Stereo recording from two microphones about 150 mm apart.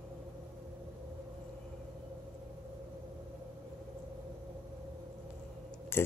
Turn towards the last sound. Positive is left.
turn(degrees=15)  # may be behind; listen again after turning